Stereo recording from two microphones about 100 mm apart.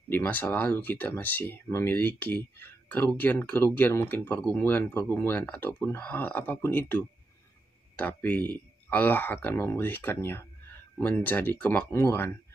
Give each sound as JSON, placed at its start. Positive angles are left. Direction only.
{"t": 0.1, "sound": "speech", "side_deg": 20}